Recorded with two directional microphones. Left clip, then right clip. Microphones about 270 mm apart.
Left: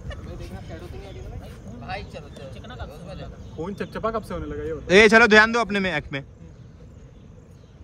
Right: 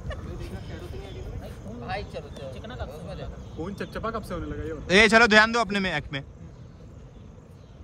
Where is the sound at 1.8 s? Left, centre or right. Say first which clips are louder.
Right 1 dB; right.